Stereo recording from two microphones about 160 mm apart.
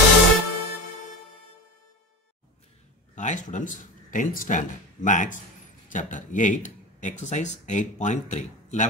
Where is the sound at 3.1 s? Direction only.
50° left (ahead or behind).